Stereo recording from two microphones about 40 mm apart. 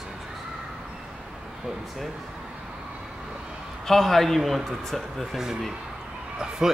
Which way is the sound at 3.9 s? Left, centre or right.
Centre.